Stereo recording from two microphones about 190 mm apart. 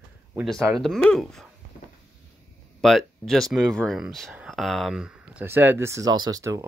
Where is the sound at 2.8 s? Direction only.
Centre (ahead or behind).